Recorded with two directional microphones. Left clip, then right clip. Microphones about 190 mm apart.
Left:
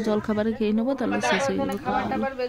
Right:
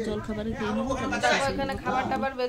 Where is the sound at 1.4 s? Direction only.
10° right (ahead or behind).